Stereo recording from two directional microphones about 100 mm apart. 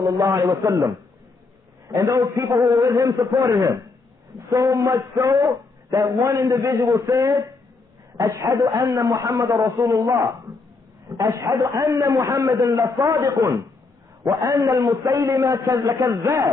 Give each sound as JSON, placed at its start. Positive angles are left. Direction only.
{"t": 0.0, "sound": "a man's voice", "side_deg": -35}